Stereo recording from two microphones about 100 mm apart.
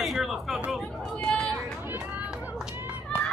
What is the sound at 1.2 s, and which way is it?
Vehicle, 10° left (ahead or behind).